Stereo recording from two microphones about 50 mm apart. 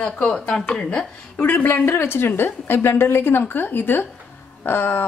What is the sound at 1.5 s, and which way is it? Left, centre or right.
A woman's voice, left.